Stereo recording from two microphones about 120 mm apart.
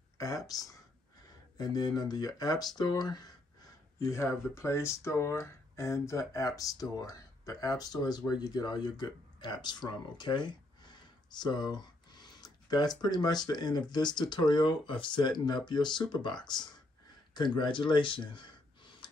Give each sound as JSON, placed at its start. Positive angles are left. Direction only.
{"t": 0.5, "sound": "speech", "side_deg": 30}